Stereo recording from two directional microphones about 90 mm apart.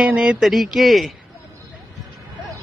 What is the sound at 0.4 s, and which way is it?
Speech, centre (ahead or behind).